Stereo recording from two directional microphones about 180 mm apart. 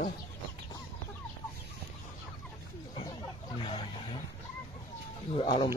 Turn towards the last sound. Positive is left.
turn(degrees=30)  # may be behind; listen again after turning